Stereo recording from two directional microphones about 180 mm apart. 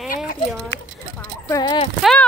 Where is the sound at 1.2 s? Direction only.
15° left (ahead or behind).